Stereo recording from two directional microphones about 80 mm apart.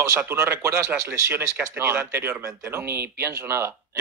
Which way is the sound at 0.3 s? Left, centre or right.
Right.